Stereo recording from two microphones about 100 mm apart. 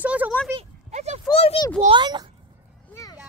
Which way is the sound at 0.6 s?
90° right.